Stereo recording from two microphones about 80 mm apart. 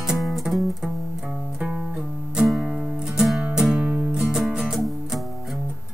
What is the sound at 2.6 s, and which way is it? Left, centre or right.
Music, centre.